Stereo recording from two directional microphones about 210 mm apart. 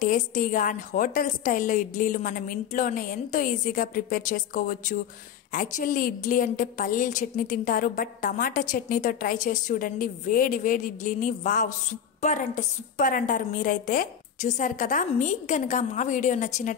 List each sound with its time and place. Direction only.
0.0 s a woman's voice: 40° left (ahead or behind)